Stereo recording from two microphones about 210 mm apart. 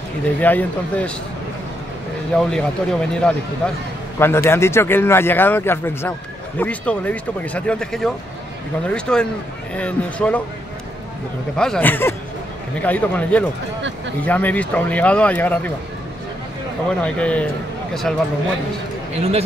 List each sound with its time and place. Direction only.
0.4 s speech: 10° left (ahead or behind)
2.3 s speech: 5° left (ahead or behind)
11.5 s speech: 5° left (ahead or behind)
17.0 s speech: 5° left (ahead or behind)
19.1 s a man's voice: 30° right (ahead or behind)